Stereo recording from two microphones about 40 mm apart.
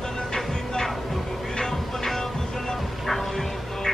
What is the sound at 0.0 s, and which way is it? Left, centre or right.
Music, centre.